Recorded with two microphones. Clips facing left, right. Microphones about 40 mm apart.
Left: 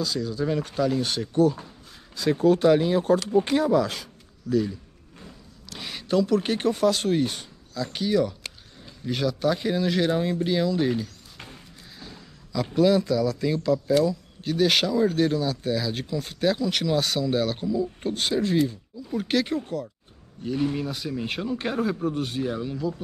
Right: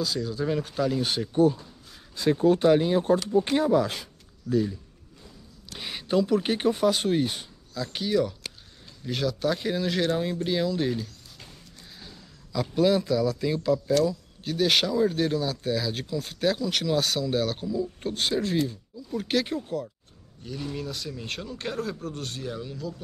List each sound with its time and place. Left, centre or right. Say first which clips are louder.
0.0 s speech: left 1 dB; centre
2.2 s speech: left 1 dB; left
5.7 s speech: left 1 dB; centre
12.7 s speech: left 2 dB; centre
20.4 s speech: left 7 dB; left